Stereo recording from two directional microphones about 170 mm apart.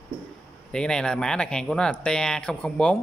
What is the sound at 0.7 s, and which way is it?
A man's voice, 5° left (ahead or behind).